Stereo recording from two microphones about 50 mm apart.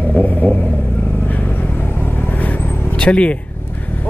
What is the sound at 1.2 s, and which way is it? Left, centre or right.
Vehicle, left.